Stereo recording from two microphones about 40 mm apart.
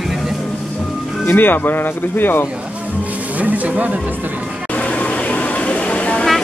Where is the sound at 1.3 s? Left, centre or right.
Left.